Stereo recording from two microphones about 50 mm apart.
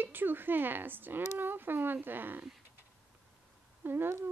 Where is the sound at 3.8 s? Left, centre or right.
Right.